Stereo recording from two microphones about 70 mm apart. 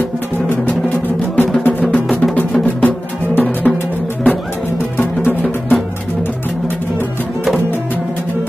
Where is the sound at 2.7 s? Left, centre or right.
Left.